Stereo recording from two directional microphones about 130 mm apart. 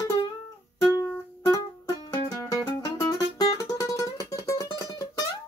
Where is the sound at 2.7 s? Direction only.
25° left (ahead or behind).